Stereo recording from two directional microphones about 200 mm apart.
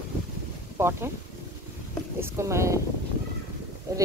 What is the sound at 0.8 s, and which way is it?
Speech, 10° right (ahead or behind).